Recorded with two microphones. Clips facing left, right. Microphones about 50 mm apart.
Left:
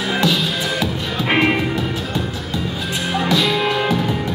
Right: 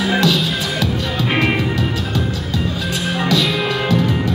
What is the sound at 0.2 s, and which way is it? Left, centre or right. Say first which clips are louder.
Music: right 1 dB; left.